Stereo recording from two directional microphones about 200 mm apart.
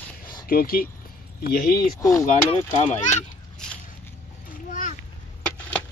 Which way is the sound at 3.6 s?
5° left (ahead or behind).